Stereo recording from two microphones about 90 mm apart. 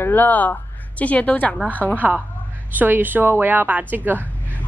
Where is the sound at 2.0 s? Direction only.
15° right (ahead or behind).